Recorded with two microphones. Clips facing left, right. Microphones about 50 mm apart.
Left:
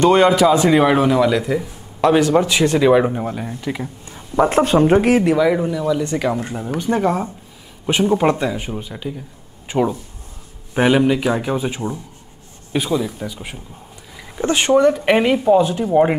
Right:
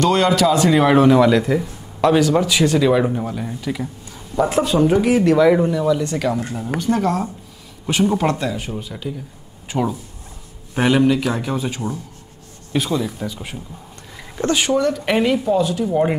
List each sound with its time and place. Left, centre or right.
0.0 s speech: centre
2.1 s a man's voice: left
2.8 s a man's voice: centre; by 5.2 s left
5.4 s speech: centre
12.7 s speech: centre
14.5 s a man's voice: left